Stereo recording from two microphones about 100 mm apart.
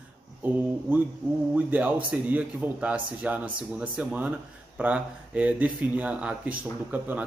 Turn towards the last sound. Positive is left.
turn(degrees=-15)  # may be behind; listen again after turning